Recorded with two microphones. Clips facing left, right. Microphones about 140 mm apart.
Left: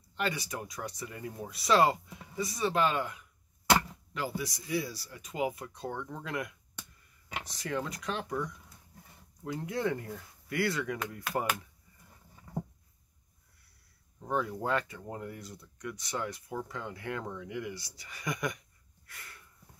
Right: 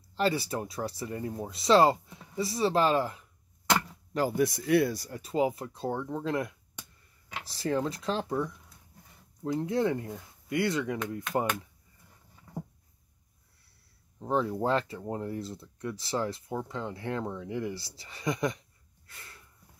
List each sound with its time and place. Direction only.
0.1 s speech: 30° right (ahead or behind)
4.5 s speech: 60° right (ahead or behind)
5.2 s speech: 30° right (ahead or behind)
14.2 s speech: 30° right (ahead or behind)
19.0 s a sound: 25° right (ahead or behind)